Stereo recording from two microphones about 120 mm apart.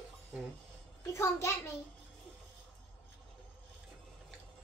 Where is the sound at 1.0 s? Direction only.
25° left (ahead or behind).